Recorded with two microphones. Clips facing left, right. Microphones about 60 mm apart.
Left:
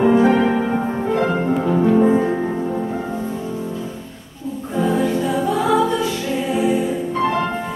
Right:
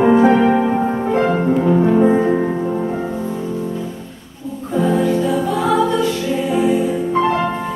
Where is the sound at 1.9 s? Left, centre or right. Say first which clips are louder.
Right 2 dB; centre.